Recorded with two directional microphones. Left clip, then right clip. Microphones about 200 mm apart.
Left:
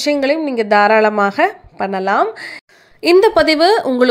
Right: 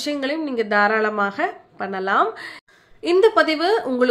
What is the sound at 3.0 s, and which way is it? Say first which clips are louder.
A woman's voice: left 5 dB; 45° left (ahead or behind).